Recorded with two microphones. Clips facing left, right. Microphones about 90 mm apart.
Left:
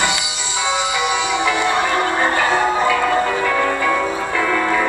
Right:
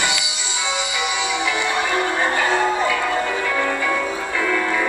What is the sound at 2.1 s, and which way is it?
Music, 30° left (ahead or behind).